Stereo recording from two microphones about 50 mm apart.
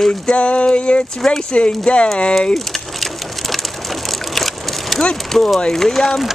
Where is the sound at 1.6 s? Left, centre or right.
Left.